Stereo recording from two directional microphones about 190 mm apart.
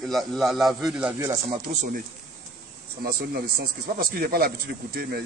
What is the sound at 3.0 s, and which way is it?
Speech, 50° right (ahead or behind).